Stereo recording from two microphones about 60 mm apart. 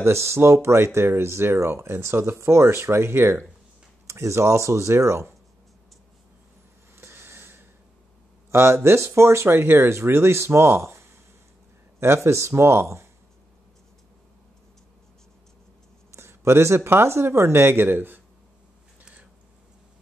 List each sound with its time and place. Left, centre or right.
0.0 s speech: right
4.1 s speech: right
7.0 s a sound: right
8.5 s speech: right
16.1 s speech: right